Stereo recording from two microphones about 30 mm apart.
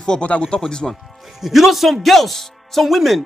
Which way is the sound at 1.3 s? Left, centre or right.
Centre.